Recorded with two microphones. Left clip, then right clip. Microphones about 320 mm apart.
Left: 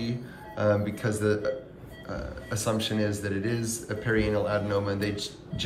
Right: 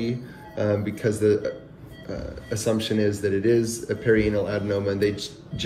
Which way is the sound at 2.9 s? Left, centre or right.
Left.